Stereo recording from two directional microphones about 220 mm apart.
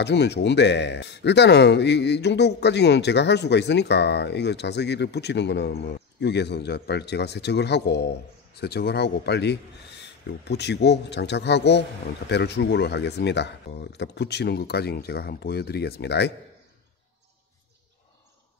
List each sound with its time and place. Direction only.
0.0 s speech: 50° left (ahead or behind)